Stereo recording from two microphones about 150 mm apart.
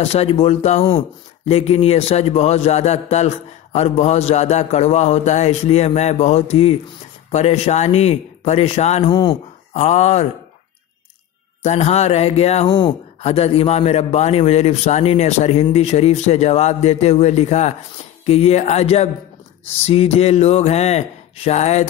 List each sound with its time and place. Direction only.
0.0 s a man's voice: 40° left (ahead or behind)
9.1 s speech: 30° left (ahead or behind)
9.8 s a man's voice: 50° left (ahead or behind)
11.6 s a man's voice: 50° left (ahead or behind)